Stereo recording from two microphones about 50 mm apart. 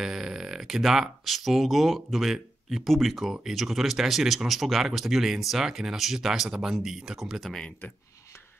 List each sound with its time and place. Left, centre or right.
0.0 s speech: centre